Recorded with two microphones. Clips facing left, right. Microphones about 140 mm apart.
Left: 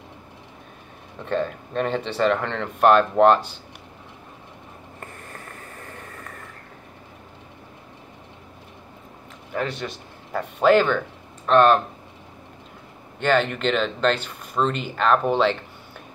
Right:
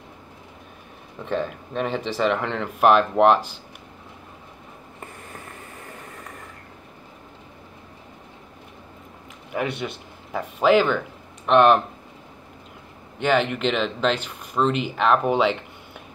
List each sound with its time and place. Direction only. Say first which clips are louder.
1.2 s speech: left 1 dB; 10° right (ahead or behind)
9.8 s speech: right 1 dB; 5° right (ahead or behind)
13.2 s speech: even; 10° right (ahead or behind)